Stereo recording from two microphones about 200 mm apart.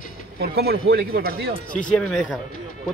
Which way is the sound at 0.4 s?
50° right (ahead or behind).